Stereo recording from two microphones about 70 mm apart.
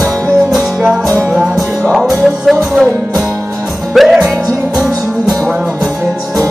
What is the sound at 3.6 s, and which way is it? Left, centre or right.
Music, centre.